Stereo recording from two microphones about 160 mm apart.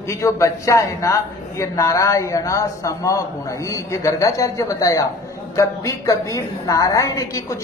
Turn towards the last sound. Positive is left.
turn(degrees=20)  # may be behind; listen again after turning